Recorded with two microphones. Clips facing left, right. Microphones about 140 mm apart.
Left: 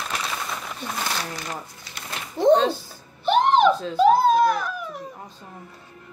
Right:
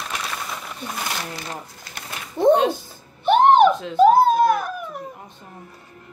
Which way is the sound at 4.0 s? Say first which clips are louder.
Right 3 dB; 50° right (ahead or behind).